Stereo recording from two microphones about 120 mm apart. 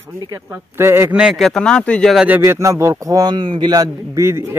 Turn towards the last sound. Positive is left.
turn(degrees=-20)  # may be behind; listen again after turning